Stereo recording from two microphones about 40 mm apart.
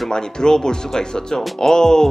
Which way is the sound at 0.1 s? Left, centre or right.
Centre.